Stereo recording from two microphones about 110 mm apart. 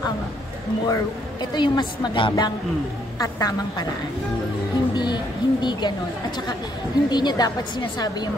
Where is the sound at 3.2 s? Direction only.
30° left (ahead or behind).